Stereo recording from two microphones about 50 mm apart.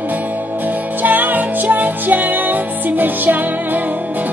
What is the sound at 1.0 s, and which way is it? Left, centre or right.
Music, right.